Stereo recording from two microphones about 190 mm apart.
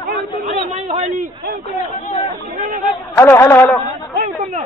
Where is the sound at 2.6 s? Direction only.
45° right (ahead or behind).